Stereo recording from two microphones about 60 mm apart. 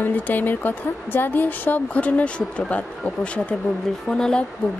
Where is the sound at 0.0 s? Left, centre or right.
Left.